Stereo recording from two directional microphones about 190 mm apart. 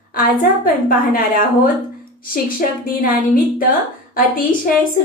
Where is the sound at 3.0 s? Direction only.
50° left (ahead or behind).